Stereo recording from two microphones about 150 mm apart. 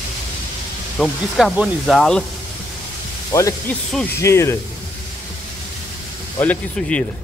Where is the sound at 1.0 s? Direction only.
Centre (ahead or behind).